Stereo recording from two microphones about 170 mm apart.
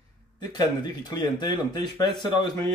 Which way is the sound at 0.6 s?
25° left (ahead or behind).